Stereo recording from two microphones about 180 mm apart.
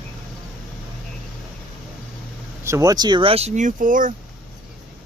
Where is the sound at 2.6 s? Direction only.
15° right (ahead or behind); by 4.1 s 50° right (ahead or behind).